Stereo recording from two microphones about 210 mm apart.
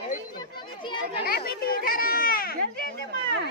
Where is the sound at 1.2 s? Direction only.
45° left (ahead or behind).